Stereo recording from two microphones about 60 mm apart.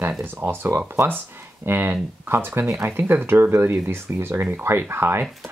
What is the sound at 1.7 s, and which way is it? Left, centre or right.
Speech, right.